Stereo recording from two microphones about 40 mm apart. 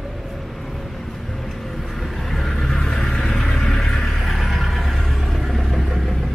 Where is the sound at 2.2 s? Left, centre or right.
Centre.